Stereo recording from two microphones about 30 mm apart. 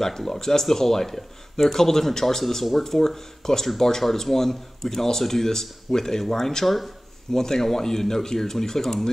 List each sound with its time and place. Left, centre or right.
0.0 s speech: centre
7.3 s speech: centre